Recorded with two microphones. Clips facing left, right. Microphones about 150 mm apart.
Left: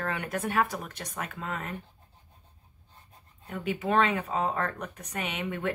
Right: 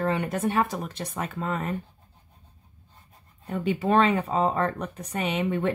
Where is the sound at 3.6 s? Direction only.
30° right (ahead or behind).